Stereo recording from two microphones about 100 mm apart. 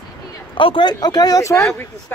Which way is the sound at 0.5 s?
55° left (ahead or behind).